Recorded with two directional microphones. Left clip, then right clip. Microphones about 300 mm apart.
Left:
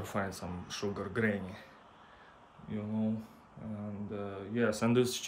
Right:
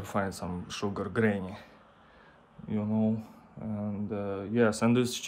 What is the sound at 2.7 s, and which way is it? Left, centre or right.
Speech, centre.